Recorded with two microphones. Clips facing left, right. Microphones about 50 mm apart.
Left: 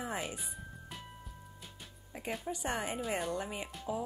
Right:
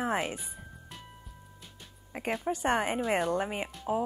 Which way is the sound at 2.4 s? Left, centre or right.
Right.